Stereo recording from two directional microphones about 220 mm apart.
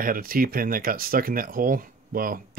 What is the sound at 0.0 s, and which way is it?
Speech, 40° right (ahead or behind).